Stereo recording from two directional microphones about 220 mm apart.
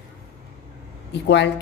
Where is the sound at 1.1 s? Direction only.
50° left (ahead or behind).